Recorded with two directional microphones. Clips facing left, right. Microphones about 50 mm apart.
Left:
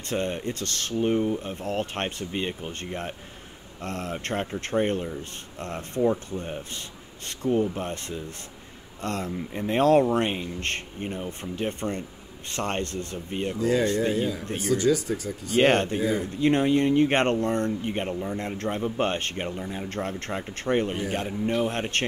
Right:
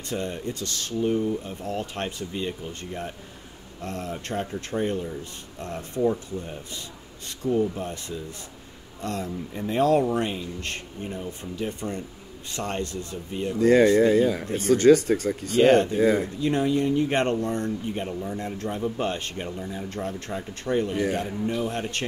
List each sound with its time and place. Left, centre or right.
0.0 s speech: left
13.6 s speech: right
15.5 s speech: left
16.0 s speech: right
16.3 s speech: left